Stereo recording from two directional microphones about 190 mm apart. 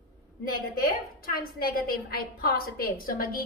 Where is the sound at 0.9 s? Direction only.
50° left (ahead or behind).